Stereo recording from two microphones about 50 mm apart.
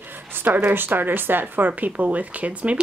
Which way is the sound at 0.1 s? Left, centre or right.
Right.